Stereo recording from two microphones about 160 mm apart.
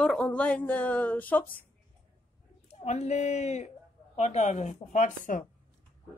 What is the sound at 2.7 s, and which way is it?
A woman's voice, 45° left (ahead or behind).